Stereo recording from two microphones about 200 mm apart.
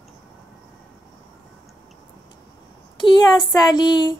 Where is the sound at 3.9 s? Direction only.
25° left (ahead or behind).